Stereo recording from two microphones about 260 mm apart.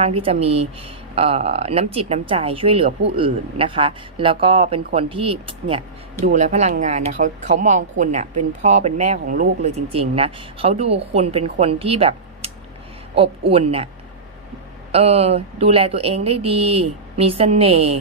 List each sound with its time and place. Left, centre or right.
0.0 s speech: right
13.5 s speech: right
14.9 s speech: right